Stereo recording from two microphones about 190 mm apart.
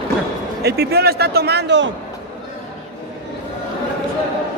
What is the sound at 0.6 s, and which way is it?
A man's voice, 60° right (ahead or behind).